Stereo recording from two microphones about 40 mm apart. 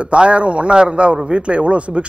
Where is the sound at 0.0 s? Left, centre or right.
Right.